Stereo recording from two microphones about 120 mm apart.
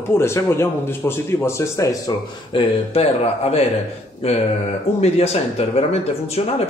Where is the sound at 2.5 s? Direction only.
55° left (ahead or behind).